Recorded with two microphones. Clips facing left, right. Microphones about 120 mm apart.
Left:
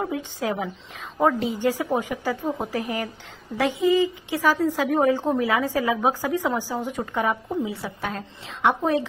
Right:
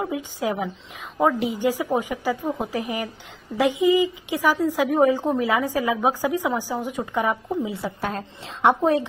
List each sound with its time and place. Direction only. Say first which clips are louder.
0.0 s a woman's voice: right 1 dB; 10° right (ahead or behind)
8.2 s a woman's voice: right 2 dB; 35° right (ahead or behind)